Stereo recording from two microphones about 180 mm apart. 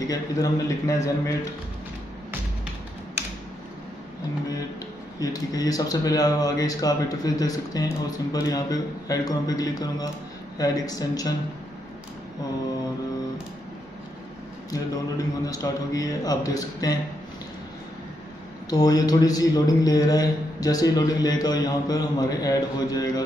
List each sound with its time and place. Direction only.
0.0 s speech: 20° left (ahead or behind)
5.2 s speech: 20° left (ahead or behind)
14.7 s speech: 20° left (ahead or behind)
18.7 s speech: 20° left (ahead or behind)